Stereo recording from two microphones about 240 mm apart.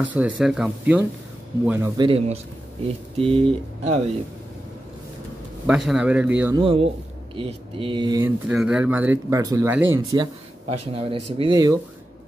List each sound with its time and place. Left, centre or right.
0.0 s speech: centre
2.0 s speech: right
5.7 s speech: centre
6.6 s speech: right
8.5 s speech: centre